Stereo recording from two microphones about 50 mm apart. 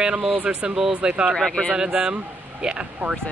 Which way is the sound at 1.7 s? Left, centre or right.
Centre.